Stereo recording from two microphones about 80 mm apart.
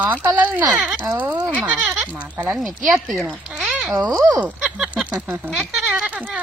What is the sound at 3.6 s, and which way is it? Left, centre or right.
Babbling, centre.